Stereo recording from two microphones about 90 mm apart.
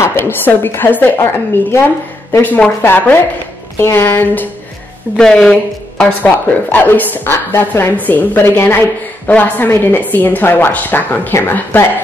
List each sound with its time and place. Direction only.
0.0 s speech: 25° left (ahead or behind)
5.1 s speech: 10° left (ahead or behind); by 11.9 s 25° left (ahead or behind)